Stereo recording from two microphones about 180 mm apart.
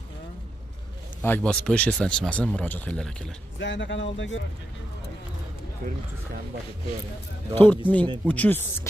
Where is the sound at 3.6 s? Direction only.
85° left.